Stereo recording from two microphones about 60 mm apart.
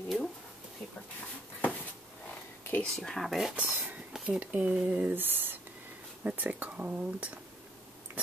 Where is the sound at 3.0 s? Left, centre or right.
Centre.